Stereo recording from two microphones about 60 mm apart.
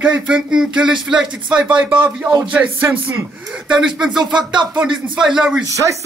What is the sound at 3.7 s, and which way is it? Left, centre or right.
Speech, centre.